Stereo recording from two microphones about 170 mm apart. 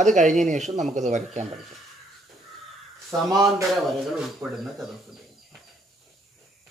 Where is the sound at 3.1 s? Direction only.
20° right (ahead or behind).